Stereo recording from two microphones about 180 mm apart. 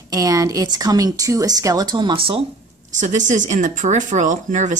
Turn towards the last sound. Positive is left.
turn(degrees=-45)  # may be behind; listen again after turning